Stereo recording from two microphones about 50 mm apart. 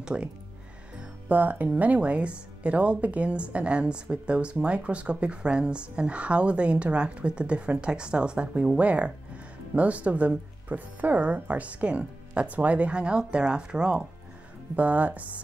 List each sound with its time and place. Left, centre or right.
0.0 s speech: right
1.3 s speech: right; by 14.0 s centre
14.8 s speech: right